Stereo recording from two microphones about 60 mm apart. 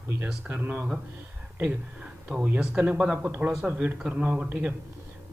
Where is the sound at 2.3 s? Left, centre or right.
Right.